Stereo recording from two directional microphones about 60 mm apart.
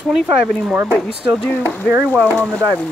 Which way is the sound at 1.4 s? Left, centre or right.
Left.